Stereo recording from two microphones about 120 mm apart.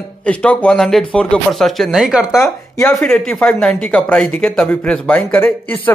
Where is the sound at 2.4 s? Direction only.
20° left (ahead or behind).